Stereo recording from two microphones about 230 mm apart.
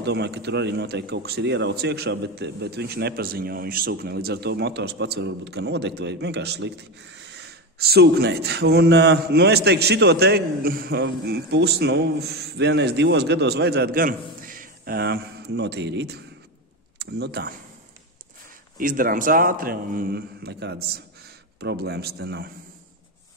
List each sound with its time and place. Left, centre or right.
0.0 s a man's voice: right
7.8 s a man's voice: right
18.8 s a man's voice: right